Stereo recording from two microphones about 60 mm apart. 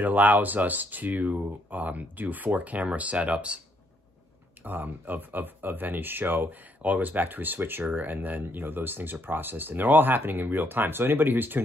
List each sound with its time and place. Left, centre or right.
0.0 s speech: right
4.6 s speech: right